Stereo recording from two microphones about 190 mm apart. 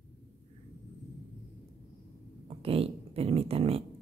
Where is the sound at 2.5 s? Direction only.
30° right (ahead or behind).